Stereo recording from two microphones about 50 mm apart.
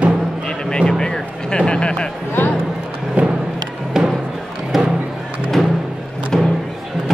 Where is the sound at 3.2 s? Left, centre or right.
Right.